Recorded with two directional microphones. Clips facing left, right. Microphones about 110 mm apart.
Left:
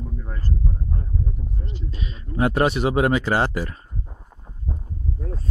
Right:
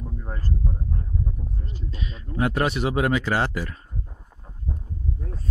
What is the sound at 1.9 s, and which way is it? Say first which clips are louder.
Speech: left 1 dB; 25° left (ahead or behind).